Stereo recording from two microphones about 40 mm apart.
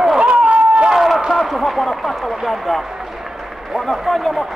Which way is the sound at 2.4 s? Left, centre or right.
Centre.